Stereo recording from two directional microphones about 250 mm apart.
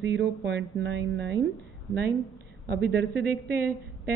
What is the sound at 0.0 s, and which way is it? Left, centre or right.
Speech, right.